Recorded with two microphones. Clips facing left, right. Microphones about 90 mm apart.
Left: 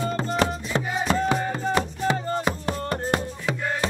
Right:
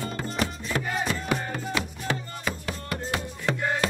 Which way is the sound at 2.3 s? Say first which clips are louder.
Left 7 dB; 40° left (ahead or behind).